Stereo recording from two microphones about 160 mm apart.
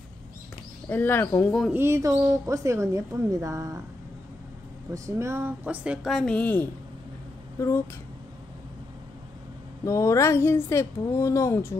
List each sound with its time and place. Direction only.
0.8 s speech: 15° left (ahead or behind)
1.7 s speech: 15° right (ahead or behind)
4.9 s speech: 20° right (ahead or behind); by 6.7 s 10° left (ahead or behind)
9.8 s speech: 20° left (ahead or behind)